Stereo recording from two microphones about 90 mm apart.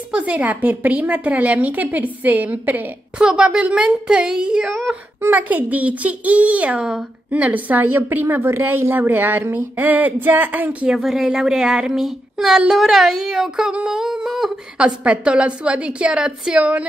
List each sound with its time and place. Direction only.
0.1 s a woman's voice: 15° right (ahead or behind)
11.0 s speech: 5° right (ahead or behind)